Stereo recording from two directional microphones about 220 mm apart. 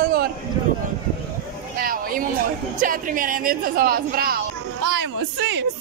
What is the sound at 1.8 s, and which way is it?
Speech, 40° right (ahead or behind).